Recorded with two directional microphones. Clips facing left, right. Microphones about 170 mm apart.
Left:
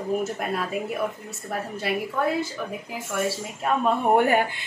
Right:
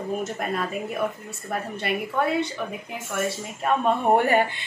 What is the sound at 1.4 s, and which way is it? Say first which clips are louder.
A woman's voice: even; centre (ahead or behind).